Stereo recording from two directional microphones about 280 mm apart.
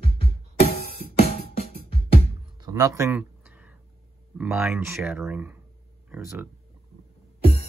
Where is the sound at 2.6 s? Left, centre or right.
Centre.